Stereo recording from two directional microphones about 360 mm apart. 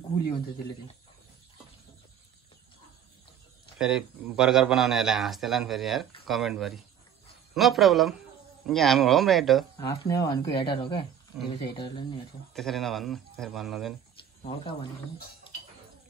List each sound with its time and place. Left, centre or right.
3.7 s speech: centre
9.8 s speech: centre
12.5 s speech: centre
14.6 s speech: centre